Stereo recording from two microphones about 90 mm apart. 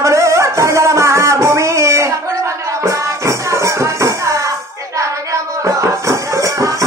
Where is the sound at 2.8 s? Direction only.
35° right (ahead or behind).